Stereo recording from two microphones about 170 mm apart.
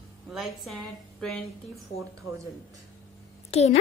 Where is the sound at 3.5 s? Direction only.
40° left (ahead or behind).